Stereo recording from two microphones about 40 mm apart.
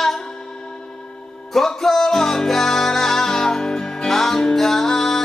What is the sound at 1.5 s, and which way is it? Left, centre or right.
Music, centre.